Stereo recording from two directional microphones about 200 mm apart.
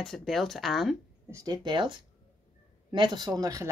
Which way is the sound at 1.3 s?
20° right (ahead or behind).